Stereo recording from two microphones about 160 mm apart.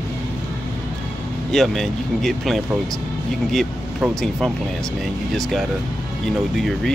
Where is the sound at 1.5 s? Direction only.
Centre (ahead or behind).